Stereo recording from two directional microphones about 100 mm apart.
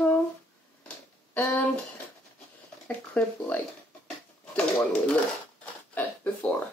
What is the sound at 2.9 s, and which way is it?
Speech, 15° left (ahead or behind).